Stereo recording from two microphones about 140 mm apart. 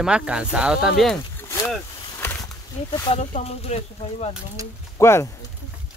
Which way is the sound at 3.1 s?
55° left (ahead or behind).